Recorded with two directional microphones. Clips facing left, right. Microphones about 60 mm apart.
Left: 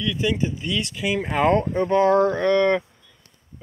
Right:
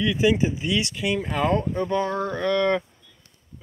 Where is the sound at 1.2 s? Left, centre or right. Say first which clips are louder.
Left 6 dB; left.